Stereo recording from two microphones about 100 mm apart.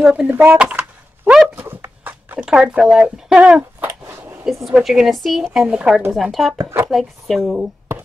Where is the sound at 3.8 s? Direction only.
20° right (ahead or behind).